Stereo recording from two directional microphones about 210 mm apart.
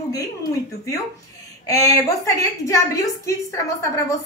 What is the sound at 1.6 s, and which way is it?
A woman's voice, 15° left (ahead or behind).